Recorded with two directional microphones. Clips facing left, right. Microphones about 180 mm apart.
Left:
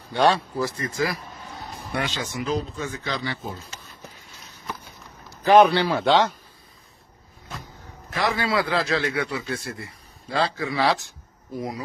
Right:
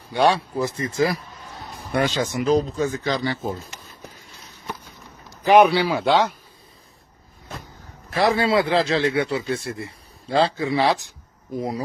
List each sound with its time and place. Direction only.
0.1 s speech: 15° right (ahead or behind)
2.0 s speech: 45° right (ahead or behind)
5.3 s a man's voice: 15° right (ahead or behind)
8.1 s speech: 30° right (ahead or behind)